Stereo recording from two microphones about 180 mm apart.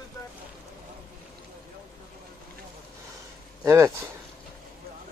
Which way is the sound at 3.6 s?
15° right (ahead or behind).